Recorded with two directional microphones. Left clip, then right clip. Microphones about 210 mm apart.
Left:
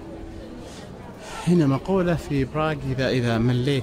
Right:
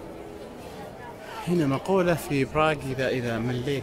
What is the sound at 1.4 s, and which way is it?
Speech, 15° left (ahead or behind).